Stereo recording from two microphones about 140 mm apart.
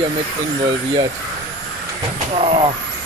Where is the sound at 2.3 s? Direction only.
45° right (ahead or behind).